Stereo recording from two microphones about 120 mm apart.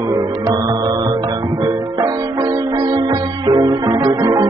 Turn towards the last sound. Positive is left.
turn(degrees=-30)  # may be behind; listen again after turning